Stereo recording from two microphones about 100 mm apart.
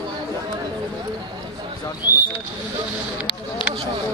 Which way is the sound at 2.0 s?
40° left (ahead or behind).